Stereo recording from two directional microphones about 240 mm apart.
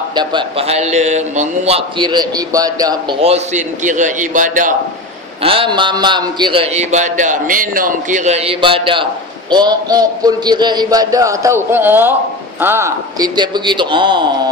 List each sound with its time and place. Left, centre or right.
0.1 s a man's voice: centre
5.4 s a man's voice: right